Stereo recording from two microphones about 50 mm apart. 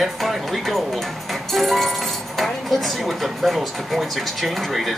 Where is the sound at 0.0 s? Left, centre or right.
Centre.